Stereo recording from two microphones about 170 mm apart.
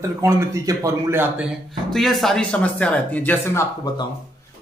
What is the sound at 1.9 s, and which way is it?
A man's voice, centre (ahead or behind).